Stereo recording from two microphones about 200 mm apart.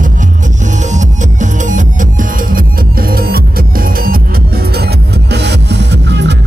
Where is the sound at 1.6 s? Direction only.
40° right (ahead or behind).